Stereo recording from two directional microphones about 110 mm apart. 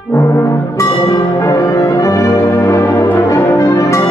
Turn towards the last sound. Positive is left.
turn(degrees=30)  # may be behind; listen again after turning